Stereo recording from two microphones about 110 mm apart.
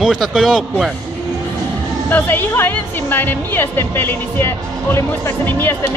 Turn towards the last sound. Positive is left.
turn(degrees=20)  # may be behind; listen again after turning